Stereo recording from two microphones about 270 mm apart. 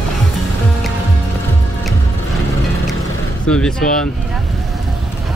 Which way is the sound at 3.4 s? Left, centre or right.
Centre.